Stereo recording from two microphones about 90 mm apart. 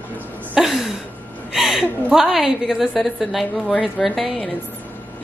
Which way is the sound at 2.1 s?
5° right (ahead or behind).